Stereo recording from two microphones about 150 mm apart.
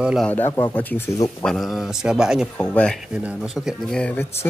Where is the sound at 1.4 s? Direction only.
Centre (ahead or behind).